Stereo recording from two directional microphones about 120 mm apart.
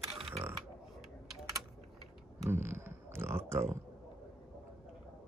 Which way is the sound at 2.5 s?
20° right (ahead or behind).